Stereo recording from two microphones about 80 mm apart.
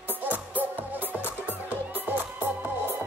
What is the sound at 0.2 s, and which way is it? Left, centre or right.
Music, right.